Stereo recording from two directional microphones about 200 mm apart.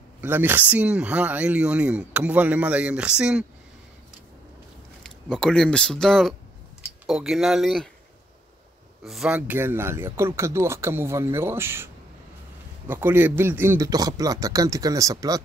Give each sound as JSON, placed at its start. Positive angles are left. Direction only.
{"t": 0.2, "sound": "speech", "side_deg": -10}
{"t": 5.0, "sound": "speech", "side_deg": 5}
{"t": 9.0, "sound": "speech", "side_deg": 0}